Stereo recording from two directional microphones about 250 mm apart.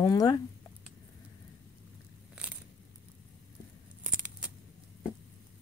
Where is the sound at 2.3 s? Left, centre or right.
Centre.